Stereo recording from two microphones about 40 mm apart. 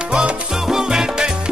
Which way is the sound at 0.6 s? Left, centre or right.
Centre.